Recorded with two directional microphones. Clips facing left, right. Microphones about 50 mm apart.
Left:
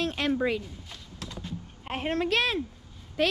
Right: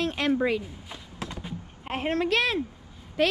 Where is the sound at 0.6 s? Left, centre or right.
Centre.